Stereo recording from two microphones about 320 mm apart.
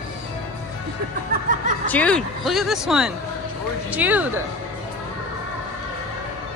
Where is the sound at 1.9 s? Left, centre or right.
Centre.